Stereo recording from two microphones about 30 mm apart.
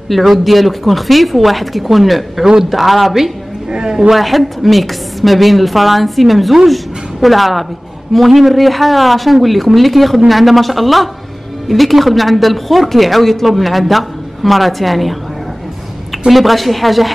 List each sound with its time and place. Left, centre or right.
0.3 s speech: centre
2.4 s speech: centre
2.7 s speech: centre
3.7 s a man's voice: right
4.1 s a woman's voice: centre
16.3 s speech: centre